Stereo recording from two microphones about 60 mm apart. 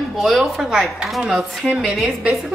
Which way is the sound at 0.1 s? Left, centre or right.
Centre.